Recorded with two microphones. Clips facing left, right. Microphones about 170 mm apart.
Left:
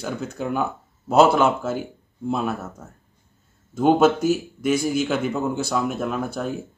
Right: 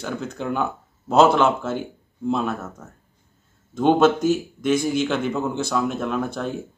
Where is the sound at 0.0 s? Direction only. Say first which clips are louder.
Even; 5° left (ahead or behind).